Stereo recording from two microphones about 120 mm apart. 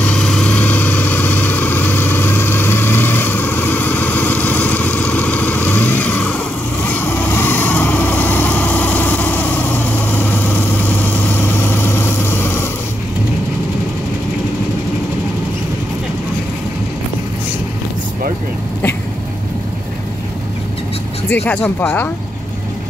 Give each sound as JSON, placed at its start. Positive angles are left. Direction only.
{"t": 0.0, "sound": "vehicle", "side_deg": 10}
{"t": 21.3, "sound": "speech", "side_deg": 10}